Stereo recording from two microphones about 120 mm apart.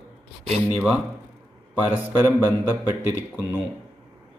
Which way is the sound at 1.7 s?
15° right (ahead or behind).